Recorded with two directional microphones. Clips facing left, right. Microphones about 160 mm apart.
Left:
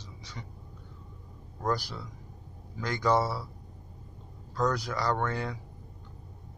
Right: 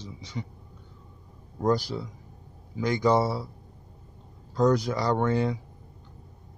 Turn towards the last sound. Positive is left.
turn(degrees=-20)  # may be behind; listen again after turning